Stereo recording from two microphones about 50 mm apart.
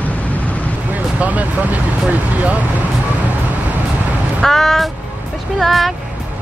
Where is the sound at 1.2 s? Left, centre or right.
Right.